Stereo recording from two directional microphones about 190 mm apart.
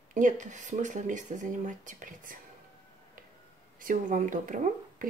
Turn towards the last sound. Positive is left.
turn(degrees=-45)  # may be behind; listen again after turning